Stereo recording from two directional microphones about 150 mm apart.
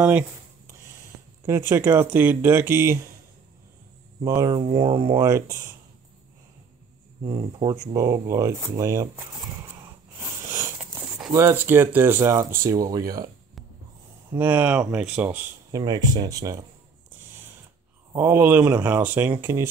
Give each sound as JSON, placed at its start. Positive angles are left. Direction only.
{"t": 1.4, "sound": "speech", "side_deg": -15}
{"t": 4.5, "sound": "speech", "side_deg": -30}
{"t": 5.2, "sound": "speech", "side_deg": -25}
{"t": 7.2, "sound": "speech", "side_deg": -35}
{"t": 10.4, "sound": "a sound", "side_deg": -15}
{"t": 11.0, "sound": "a sound", "side_deg": -5}
{"t": 11.3, "sound": "speech", "side_deg": -15}
{"t": 14.4, "sound": "speech", "side_deg": -10}
{"t": 15.7, "sound": "speech", "side_deg": -25}
{"t": 18.1, "sound": "speech", "side_deg": -15}